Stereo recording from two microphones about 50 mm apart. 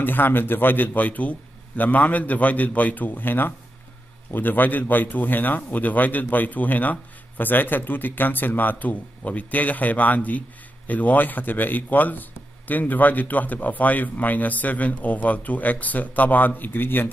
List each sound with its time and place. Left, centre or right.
0.0 s speech: left